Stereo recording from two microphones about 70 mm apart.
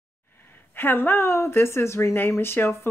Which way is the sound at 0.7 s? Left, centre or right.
Left.